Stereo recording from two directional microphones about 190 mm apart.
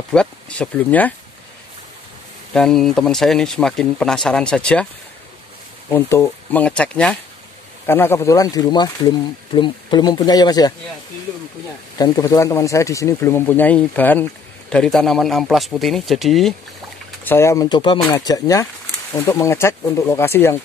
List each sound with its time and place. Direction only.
0.1 s speech: 5° left (ahead or behind)
2.5 s speech: 5° left (ahead or behind)
5.9 s speech: 15° left (ahead or behind)
12.0 s speech: 15° left (ahead or behind); by 16.5 s centre (ahead or behind)
17.2 s speech: 10° left (ahead or behind)